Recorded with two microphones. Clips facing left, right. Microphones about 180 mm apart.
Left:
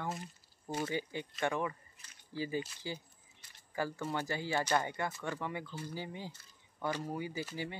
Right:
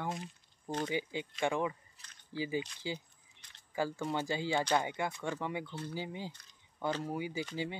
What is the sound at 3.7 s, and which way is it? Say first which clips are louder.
Speech: right 2 dB; 15° right (ahead or behind).